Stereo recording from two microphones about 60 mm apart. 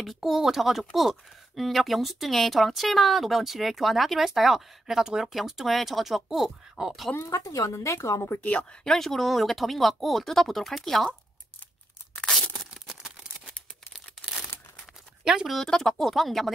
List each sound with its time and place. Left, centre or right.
0.0 s speech: centre
7.2 s a woman's voice: left
8.4 s speech: left
8.8 s speech: centre
12.3 s tearing: centre
15.4 s speech: centre